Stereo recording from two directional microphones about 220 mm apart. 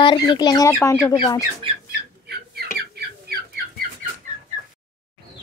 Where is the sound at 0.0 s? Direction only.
20° left (ahead or behind).